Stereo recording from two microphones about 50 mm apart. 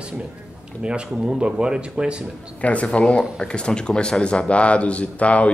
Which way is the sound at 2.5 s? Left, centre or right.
Left.